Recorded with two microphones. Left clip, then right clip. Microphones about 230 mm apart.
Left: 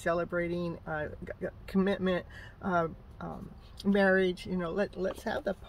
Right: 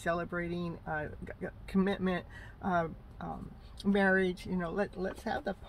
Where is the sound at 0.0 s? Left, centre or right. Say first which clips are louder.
Left 4 dB; centre.